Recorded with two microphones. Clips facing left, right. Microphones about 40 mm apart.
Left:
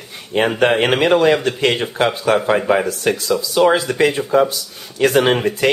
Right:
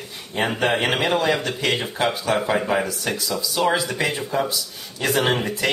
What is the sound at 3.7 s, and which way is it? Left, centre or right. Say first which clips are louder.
Speech: left 5 dB; left.